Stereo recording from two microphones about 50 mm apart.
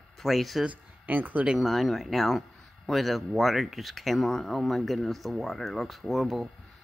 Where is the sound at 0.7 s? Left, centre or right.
Right.